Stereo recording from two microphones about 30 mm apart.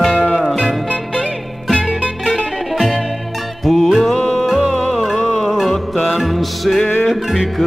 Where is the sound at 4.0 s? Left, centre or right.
Left.